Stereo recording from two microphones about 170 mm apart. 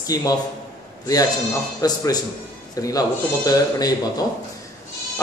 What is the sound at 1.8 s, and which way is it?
A man's voice, 20° left (ahead or behind).